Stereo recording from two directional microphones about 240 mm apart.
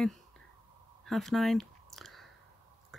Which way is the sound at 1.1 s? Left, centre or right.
Centre.